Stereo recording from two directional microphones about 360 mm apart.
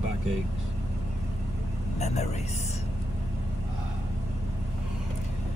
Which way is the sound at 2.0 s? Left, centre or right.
Centre.